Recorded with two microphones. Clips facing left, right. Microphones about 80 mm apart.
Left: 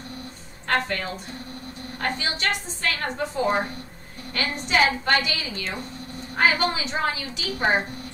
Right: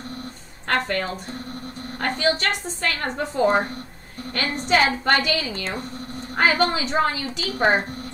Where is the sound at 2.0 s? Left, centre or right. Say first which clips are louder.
Right 5 dB; right.